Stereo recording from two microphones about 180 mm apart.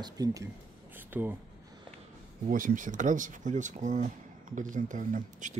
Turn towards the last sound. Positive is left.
turn(degrees=-45)  # may be behind; listen again after turning